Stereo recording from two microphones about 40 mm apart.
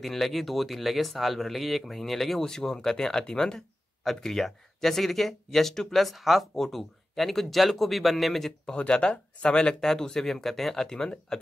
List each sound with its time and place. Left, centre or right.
0.0 s speech: centre
8.7 s speech: left